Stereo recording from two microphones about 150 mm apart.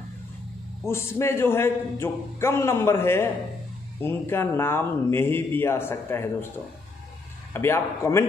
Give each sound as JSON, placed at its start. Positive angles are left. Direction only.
{"t": 0.8, "sound": "a man's voice", "side_deg": 15}
{"t": 7.5, "sound": "a man's voice", "side_deg": 15}